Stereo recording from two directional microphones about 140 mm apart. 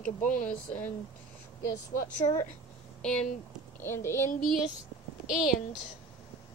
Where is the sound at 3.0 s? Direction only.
5° left (ahead or behind).